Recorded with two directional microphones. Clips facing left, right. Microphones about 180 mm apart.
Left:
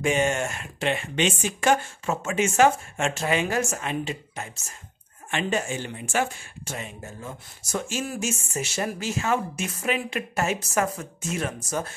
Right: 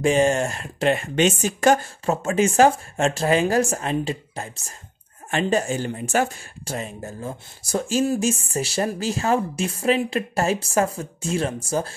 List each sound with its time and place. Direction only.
0.0 s speech: 35° right (ahead or behind)